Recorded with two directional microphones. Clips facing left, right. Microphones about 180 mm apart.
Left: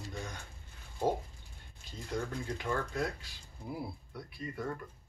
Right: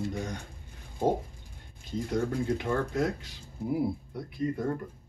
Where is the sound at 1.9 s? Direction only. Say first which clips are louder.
Right 8 dB; 25° right (ahead or behind).